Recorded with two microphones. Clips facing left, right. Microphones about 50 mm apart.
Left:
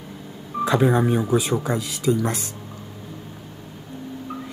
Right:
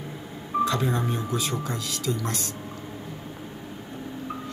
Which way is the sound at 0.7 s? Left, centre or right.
Centre.